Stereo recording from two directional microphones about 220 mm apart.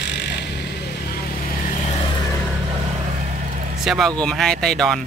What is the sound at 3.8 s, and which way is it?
Speech, centre (ahead or behind).